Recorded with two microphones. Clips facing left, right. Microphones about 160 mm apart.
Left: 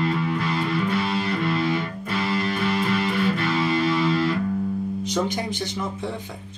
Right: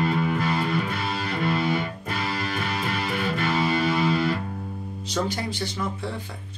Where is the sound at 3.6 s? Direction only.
45° right (ahead or behind).